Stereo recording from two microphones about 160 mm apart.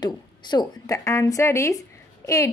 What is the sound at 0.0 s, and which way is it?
A woman's voice, 25° left (ahead or behind).